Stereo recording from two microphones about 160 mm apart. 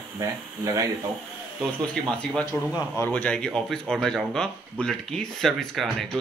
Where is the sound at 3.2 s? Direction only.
5° left (ahead or behind).